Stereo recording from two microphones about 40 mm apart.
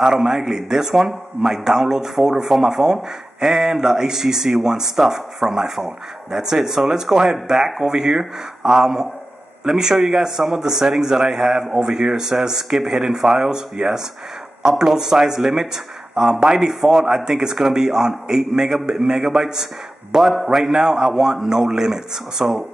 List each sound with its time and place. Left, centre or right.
0.0 s speech: centre